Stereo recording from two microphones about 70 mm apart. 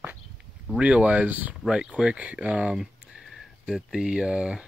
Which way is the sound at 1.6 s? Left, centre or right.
Centre.